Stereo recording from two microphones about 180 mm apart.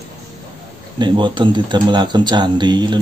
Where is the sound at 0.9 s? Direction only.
25° right (ahead or behind).